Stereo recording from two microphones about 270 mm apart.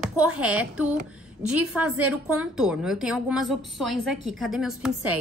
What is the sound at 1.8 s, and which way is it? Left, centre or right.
Speech, right.